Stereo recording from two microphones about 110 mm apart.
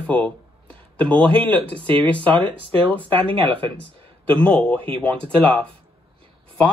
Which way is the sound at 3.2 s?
55° right (ahead or behind).